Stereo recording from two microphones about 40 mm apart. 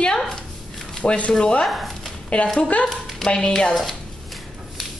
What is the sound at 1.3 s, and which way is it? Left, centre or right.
Chopping, left.